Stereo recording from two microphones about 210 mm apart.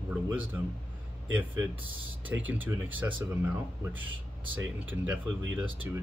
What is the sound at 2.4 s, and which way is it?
Speech, 10° right (ahead or behind).